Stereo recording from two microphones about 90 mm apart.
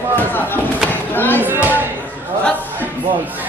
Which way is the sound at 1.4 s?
20° right (ahead or behind).